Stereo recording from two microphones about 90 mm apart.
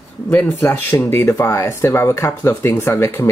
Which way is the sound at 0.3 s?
25° left (ahead or behind).